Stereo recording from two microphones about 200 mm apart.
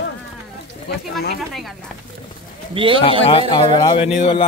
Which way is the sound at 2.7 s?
25° right (ahead or behind).